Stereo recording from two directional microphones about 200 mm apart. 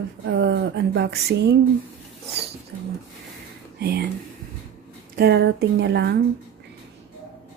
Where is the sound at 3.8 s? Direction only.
55° right (ahead or behind).